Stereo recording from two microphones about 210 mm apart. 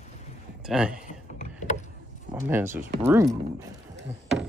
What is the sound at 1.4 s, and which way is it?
Rowboat, 35° left (ahead or behind).